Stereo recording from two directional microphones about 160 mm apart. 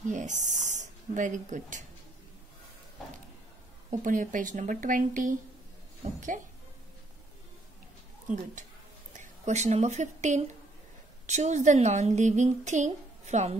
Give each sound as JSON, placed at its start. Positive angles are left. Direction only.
{"t": 0.1, "sound": "speech", "side_deg": -50}
{"t": 3.9, "sound": "a woman's voice", "side_deg": -55}
{"t": 8.3, "sound": "a woman's voice", "side_deg": -50}